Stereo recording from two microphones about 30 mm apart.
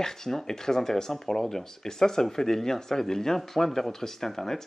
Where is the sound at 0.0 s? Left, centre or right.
Centre.